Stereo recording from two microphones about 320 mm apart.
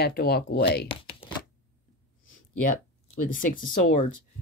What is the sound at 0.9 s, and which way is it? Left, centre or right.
Chopping, centre.